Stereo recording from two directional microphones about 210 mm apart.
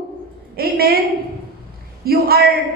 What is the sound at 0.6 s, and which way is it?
Speech, 45° right (ahead or behind).